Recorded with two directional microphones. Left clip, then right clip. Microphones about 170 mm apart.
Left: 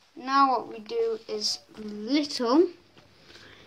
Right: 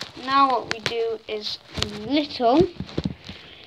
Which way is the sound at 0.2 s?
45° left (ahead or behind).